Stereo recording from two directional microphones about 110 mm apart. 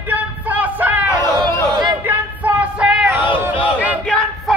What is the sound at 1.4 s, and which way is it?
Chatter, 40° right (ahead or behind).